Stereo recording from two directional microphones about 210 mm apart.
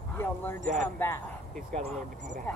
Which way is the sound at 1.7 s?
35° right (ahead or behind).